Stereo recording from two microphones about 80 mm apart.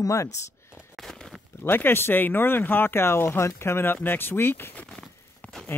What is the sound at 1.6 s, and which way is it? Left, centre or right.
Speech, left.